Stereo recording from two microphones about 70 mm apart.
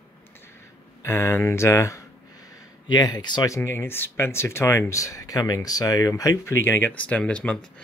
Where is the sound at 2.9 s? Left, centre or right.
Left.